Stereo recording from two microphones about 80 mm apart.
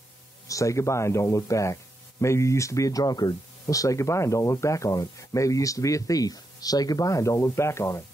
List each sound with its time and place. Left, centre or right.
0.5 s speech: left